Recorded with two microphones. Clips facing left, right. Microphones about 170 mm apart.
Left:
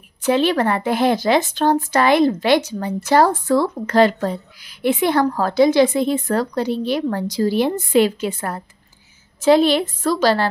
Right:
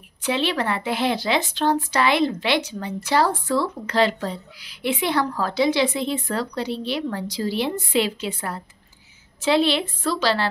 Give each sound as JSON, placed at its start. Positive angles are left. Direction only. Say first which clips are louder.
{"t": 0.2, "sound": "a woman's voice", "louder": "left 7 dB", "side_deg": 45}